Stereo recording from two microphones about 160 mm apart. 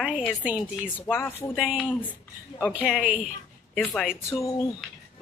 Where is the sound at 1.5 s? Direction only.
Centre (ahead or behind).